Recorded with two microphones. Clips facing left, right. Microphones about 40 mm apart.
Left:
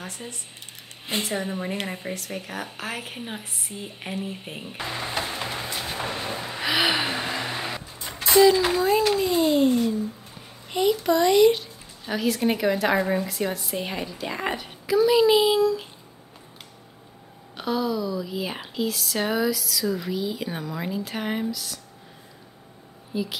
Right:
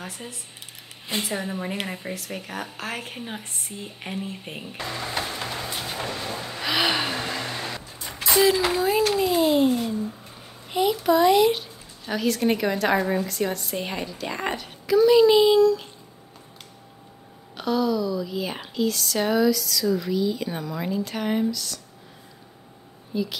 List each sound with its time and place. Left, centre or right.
0.0 s a woman's voice: centre
4.7 s speech: centre
5.2 s music: centre
6.0 s a sound: left
6.3 s a sound: centre
8.0 s a sound: left
8.3 s a woman's voice: centre
17.6 s speech: centre
23.1 s speech: centre